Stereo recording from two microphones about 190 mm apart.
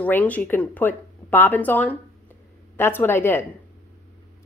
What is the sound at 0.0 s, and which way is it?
A woman's voice, 10° left (ahead or behind).